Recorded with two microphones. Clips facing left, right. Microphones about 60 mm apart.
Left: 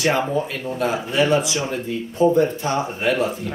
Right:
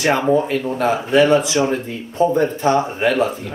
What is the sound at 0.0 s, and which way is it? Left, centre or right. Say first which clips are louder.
Speech: right 4 dB; right.